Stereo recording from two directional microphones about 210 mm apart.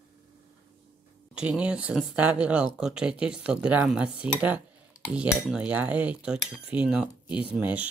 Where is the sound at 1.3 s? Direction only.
5° right (ahead or behind).